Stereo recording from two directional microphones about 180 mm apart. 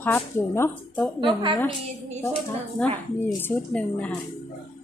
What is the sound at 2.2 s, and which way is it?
A woman's voice, 10° left (ahead or behind).